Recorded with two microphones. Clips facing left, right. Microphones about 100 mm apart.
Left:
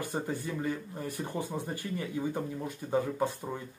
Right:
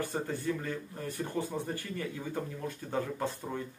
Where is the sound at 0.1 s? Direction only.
15° left (ahead or behind).